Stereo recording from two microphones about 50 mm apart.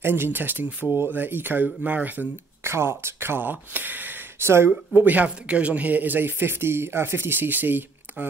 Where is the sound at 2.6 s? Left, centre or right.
Right.